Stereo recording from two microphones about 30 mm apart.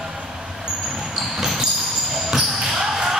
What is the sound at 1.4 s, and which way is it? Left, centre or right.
Basketball bounce, centre.